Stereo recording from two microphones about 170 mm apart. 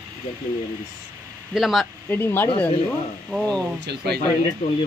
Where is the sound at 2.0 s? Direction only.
15° left (ahead or behind).